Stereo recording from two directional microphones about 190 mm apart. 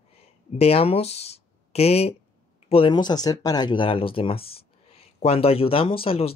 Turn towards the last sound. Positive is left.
turn(degrees=30)  # may be behind; listen again after turning